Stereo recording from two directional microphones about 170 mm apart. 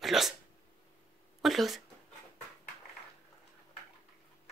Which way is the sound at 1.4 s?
Centre (ahead or behind).